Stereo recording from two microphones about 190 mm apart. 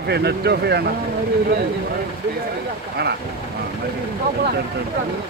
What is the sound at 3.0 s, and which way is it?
Speech, 60° right (ahead or behind).